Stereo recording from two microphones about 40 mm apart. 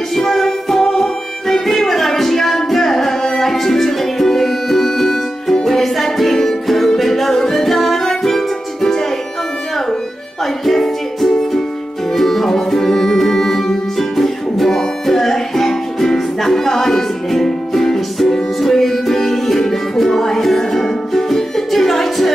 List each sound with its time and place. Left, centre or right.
0.1 s music: centre
1.7 s music: centre
10.6 s music: centre